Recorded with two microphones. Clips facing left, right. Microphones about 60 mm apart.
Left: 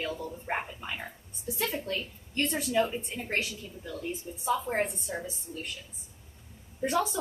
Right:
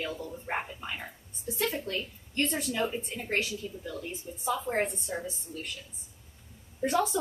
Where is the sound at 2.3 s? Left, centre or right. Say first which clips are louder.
Left 3 dB; centre.